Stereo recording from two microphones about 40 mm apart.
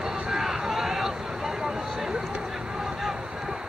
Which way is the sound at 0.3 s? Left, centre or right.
Centre.